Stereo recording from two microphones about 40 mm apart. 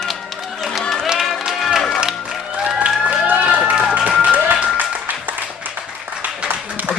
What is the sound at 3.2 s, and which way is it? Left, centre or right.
Run, right.